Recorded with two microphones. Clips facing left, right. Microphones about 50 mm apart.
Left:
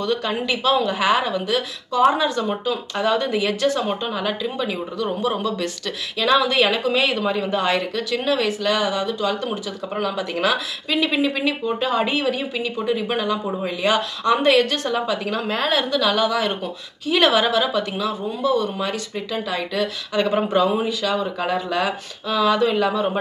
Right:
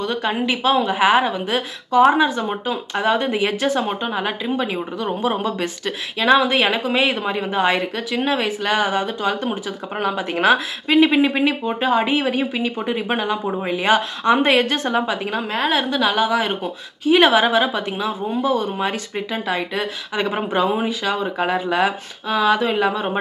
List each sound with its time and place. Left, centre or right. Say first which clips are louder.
0.0 s a woman's voice: right 1 dB; right
15.4 s a woman's voice: right 2 dB; centre
15.9 s a woman's voice: right 1 dB; right